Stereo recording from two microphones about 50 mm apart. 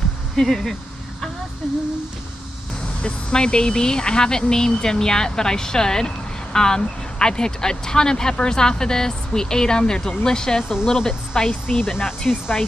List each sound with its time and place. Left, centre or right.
0.4 s speech: centre
3.0 s speech: centre
11.6 s speech: centre